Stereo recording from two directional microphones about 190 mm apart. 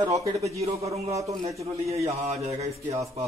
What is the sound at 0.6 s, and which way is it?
Speech, 35° right (ahead or behind).